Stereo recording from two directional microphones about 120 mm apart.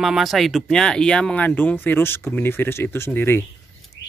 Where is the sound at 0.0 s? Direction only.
Centre (ahead or behind).